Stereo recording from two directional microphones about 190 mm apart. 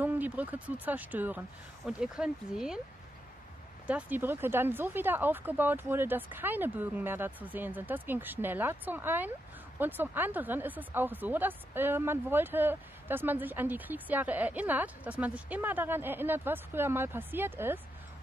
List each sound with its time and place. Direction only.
0.0 s speech: 10° right (ahead or behind)
3.8 s speech: 10° right (ahead or behind)